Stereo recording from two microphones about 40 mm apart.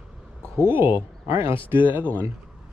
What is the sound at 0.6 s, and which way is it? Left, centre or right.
Speech, right.